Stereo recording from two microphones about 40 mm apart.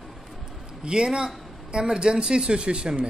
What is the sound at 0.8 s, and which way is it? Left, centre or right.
A man's voice, right.